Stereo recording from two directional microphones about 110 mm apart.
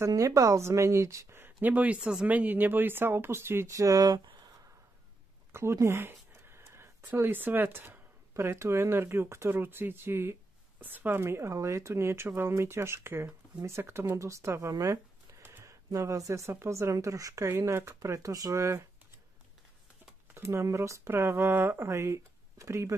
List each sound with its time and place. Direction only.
0.0 s speech: 30° right (ahead or behind)
5.5 s speech: 25° right (ahead or behind)
20.3 s speech: 25° right (ahead or behind)